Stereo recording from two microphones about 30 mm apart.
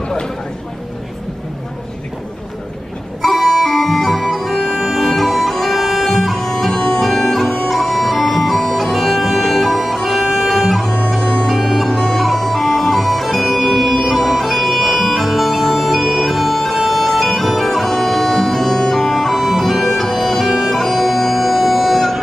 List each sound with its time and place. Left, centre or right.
3.3 s organ: centre
3.6 s music: centre
6.4 s music: centre
7.0 s bagpipes: centre
8.7 s music: centre
10.9 s music: centre
11.5 s music: centre
11.9 s bagpipes: centre
12.2 s music: centre
14.1 s bagpipes: centre
20.0 s bagpipes: centre
20.4 s bagpipes: centre
20.7 s music: centre